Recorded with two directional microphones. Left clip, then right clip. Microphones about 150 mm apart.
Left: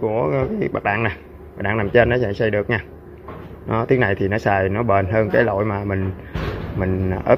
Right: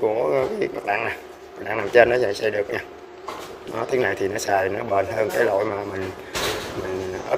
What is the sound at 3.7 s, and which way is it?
Speech, 20° right (ahead or behind).